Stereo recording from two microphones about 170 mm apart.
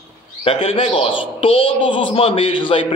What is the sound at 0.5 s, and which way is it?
A man's voice, 35° left (ahead or behind).